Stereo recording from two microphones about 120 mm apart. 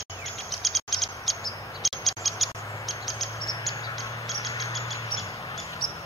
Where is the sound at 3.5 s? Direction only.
30° left (ahead or behind).